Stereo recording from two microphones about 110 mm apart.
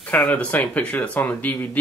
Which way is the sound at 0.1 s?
10° left (ahead or behind).